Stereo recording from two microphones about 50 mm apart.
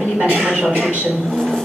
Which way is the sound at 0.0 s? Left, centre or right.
Right.